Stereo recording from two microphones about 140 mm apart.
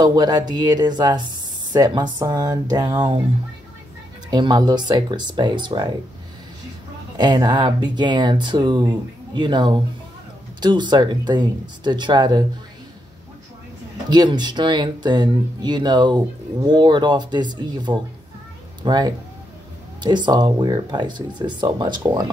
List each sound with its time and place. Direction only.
0.0 s speech: 30° right (ahead or behind)
4.3 s speech: 30° right (ahead or behind)
7.2 s speech: 30° right (ahead or behind)
14.0 s speech: 30° right (ahead or behind)